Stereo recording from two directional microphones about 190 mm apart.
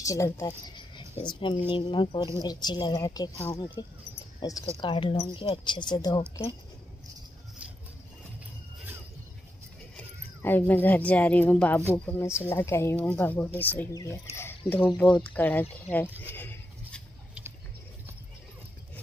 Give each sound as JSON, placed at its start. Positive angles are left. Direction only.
{"t": 0.0, "sound": "speech", "side_deg": 15}
{"t": 9.9, "sound": "speech", "side_deg": 10}
{"t": 15.9, "sound": "sheep", "side_deg": 10}